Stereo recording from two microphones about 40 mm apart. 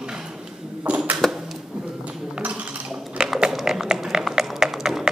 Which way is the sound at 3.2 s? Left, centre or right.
Right.